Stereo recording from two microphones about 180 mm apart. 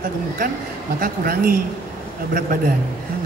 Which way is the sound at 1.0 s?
55° right (ahead or behind).